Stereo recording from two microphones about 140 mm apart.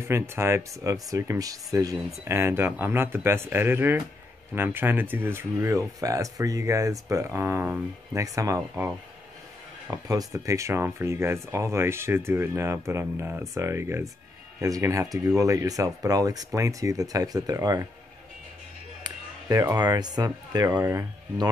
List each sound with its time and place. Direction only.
0.1 s speech: 20° right (ahead or behind)
19.7 s speech: 30° right (ahead or behind)